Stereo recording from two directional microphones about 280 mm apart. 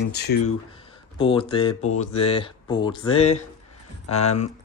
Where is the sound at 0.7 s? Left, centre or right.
Centre.